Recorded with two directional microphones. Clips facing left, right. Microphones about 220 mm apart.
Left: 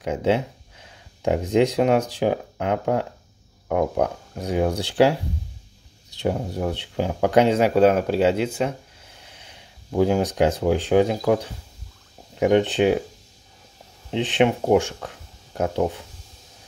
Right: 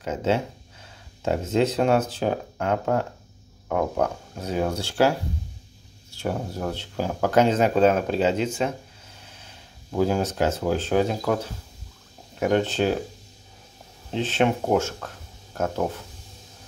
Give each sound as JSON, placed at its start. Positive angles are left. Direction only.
{"t": 0.0, "sound": "speech", "side_deg": 15}
{"t": 6.0, "sound": "speech", "side_deg": 15}
{"t": 14.1, "sound": "speech", "side_deg": 15}